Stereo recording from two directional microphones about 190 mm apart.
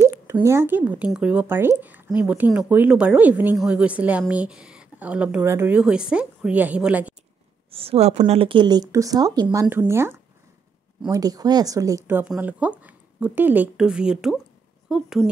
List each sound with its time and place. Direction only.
0.0 s speech: 15° right (ahead or behind)
7.7 s speech: 30° right (ahead or behind); by 15.2 s centre (ahead or behind)